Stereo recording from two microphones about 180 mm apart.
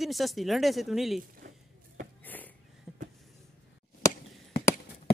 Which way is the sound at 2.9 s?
Centre (ahead or behind).